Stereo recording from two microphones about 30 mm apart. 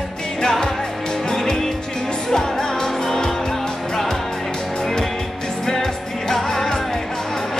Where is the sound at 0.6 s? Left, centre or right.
Left.